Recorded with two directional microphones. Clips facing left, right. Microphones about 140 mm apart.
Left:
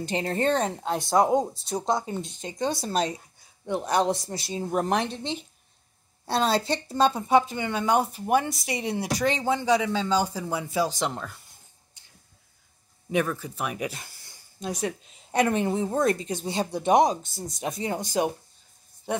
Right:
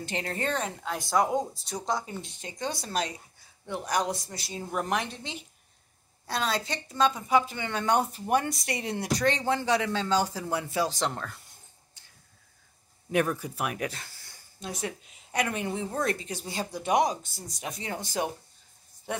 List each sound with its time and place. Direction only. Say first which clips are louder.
0.1 s a woman's voice: left 7 dB; 25° left (ahead or behind); by 11.3 s 5° left (ahead or behind)
13.1 s speech: left 1 dB; 10° right (ahead or behind)
13.7 s a woman's voice: left 2 dB; 10° left (ahead or behind)